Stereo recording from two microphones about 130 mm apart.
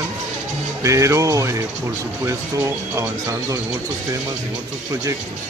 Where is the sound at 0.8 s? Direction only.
25° right (ahead or behind).